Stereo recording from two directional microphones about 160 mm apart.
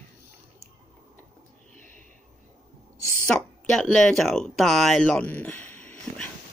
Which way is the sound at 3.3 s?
5° left (ahead or behind).